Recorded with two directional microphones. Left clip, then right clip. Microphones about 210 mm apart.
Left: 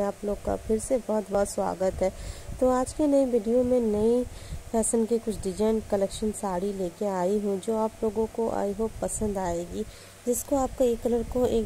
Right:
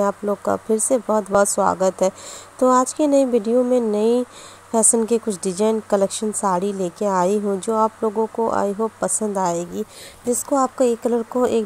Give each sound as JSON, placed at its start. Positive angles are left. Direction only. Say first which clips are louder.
{"t": 0.0, "sound": "speech", "louder": "right 8 dB", "side_deg": -20}